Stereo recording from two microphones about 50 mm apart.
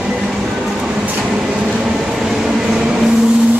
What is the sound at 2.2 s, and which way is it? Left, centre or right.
Train, centre.